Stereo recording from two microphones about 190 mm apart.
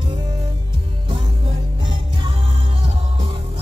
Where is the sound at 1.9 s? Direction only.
25° right (ahead or behind).